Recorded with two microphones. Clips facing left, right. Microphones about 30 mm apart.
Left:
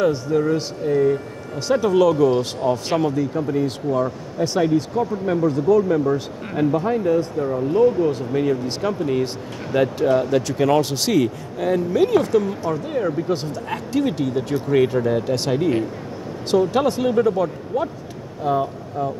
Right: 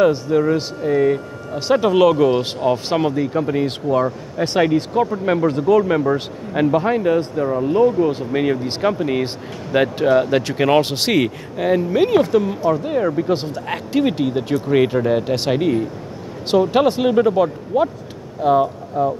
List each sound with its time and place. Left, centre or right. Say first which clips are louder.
0.0 s speech: right 4 dB; right
7.3 s speech: right 2 dB; right
11.5 s speech: right 3 dB; right
13.3 s speech: right 3 dB; right